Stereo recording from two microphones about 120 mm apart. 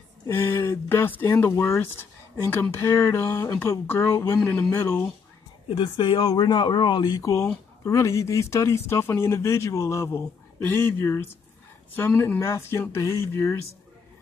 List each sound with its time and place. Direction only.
0.3 s speech: 20° left (ahead or behind)
5.8 s speech: 40° left (ahead or behind); by 13.6 s 20° left (ahead or behind)